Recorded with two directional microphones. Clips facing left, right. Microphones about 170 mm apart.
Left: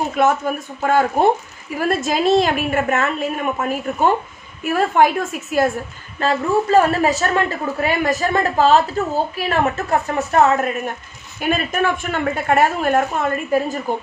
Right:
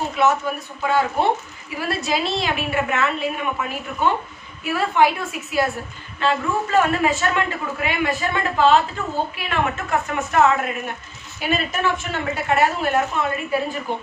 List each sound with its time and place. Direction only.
0.2 s a woman's voice: 50° left (ahead or behind)
11.3 s speech: 50° left (ahead or behind)